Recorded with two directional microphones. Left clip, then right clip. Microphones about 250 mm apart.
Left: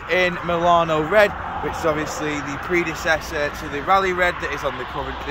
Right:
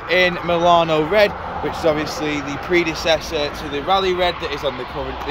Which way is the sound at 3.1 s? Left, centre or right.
Centre.